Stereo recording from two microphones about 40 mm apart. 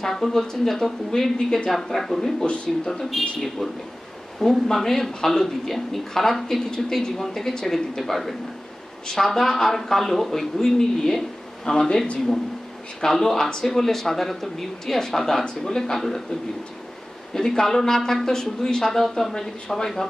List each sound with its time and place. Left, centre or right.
0.0 s a woman's voice: centre
2.4 s speech: left
3.2 s speech: centre
4.4 s a woman's voice: centre
9.0 s a woman's voice: centre
13.0 s a woman's voice: centre
17.3 s a woman's voice: centre